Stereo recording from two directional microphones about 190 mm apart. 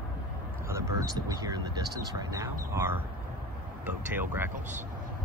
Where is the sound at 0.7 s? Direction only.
20° right (ahead or behind).